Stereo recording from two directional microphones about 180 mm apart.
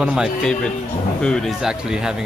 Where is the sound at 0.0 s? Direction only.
5° right (ahead or behind).